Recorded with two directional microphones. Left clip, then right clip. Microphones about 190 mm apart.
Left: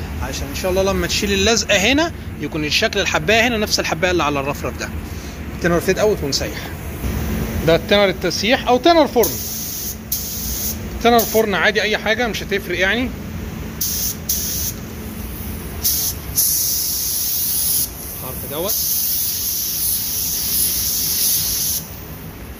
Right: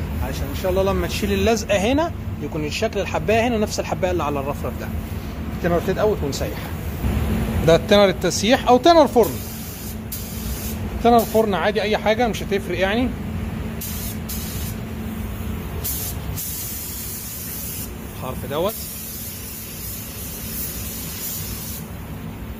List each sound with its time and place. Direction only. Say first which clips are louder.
0.3 s a man's voice: left 2 dB; 20° left (ahead or behind)
5.6 s speech: left 3 dB; 20° left (ahead or behind)
7.6 s speech: even; 5° right (ahead or behind)
11.0 s a man's voice: left 1 dB; 5° left (ahead or behind)